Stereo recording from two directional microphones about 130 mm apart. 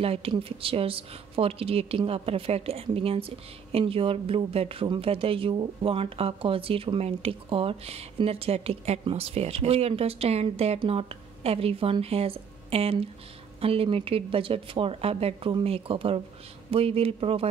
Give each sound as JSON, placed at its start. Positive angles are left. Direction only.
{"t": 0.0, "sound": "a woman's voice", "side_deg": -45}